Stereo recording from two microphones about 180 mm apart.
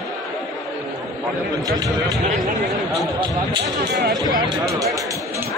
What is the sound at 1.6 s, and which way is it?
Speech, 20° right (ahead or behind).